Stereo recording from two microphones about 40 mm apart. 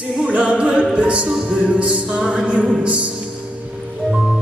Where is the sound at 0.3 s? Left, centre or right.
Right.